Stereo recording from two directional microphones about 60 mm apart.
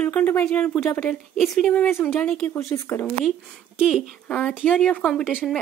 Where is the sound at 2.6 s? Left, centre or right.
Left.